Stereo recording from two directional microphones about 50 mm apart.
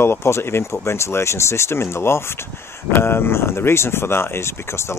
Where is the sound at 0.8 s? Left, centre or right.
Left.